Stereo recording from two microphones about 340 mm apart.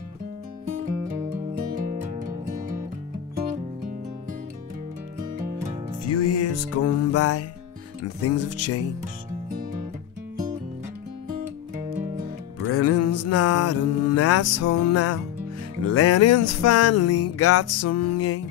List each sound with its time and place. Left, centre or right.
2.2 s music: right
6.0 s music: left
12.7 s music: left